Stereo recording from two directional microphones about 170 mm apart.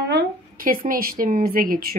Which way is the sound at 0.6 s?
55° right (ahead or behind).